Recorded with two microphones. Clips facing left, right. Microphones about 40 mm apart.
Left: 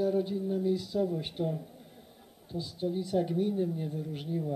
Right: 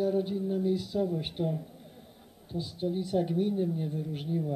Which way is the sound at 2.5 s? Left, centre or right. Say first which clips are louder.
Right 1 dB; right.